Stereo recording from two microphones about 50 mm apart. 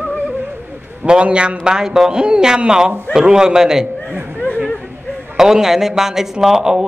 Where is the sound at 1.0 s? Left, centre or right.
Right.